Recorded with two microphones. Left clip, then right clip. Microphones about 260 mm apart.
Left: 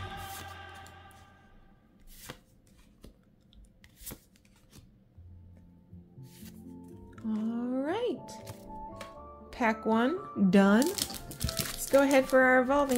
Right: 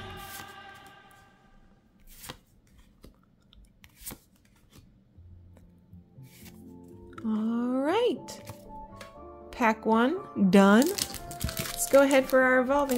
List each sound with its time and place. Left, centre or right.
2.3 s chopping: centre
3.8 s chopping: centre
7.1 s music: centre
9.5 s speech: centre